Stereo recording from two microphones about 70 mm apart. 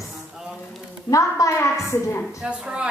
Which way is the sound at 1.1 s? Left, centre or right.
Left.